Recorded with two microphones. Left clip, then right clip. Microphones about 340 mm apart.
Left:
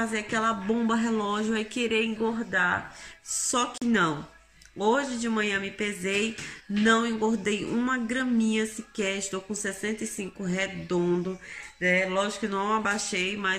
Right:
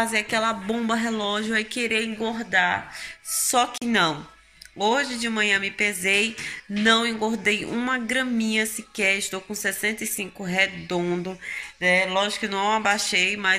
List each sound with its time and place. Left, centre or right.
0.0 s speech: centre